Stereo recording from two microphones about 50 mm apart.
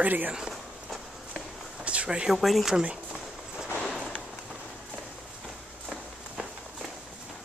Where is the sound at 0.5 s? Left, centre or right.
Centre.